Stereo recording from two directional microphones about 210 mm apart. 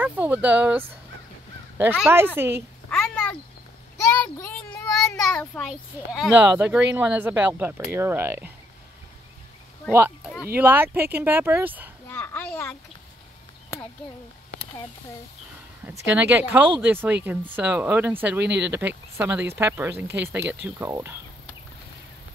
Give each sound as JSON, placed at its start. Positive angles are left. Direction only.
{"t": 0.0, "sound": "a woman's voice", "side_deg": -5}
{"t": 2.9, "sound": "a sound", "side_deg": 5}
{"t": 4.4, "sound": "a sound", "side_deg": 5}
{"t": 5.7, "sound": "a woman's voice", "side_deg": 0}
{"t": 9.8, "sound": "a woman's voice", "side_deg": -5}
{"t": 12.1, "sound": "a sound", "side_deg": 10}
{"t": 16.2, "sound": "a woman's voice", "side_deg": -10}
{"t": 18.4, "sound": "speech", "side_deg": -55}
{"t": 19.1, "sound": "a woman's voice", "side_deg": -10}